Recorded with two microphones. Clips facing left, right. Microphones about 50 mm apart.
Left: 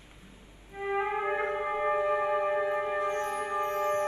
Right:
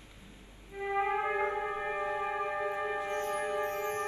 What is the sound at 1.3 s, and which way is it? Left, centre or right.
Music, left.